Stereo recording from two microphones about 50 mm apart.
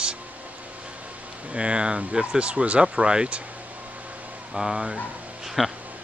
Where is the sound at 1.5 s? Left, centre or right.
Right.